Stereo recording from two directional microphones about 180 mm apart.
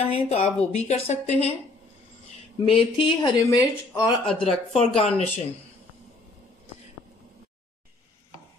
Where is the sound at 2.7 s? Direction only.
30° left (ahead or behind).